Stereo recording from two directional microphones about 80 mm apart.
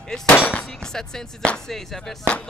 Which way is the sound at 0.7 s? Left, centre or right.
Centre.